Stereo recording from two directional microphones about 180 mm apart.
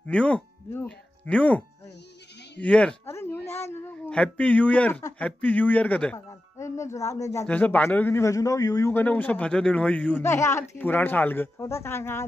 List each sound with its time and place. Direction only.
0.0 s speech: 5° left (ahead or behind)
2.6 s a sound: 5° left (ahead or behind)
3.6 s a man's voice: 10° left (ahead or behind)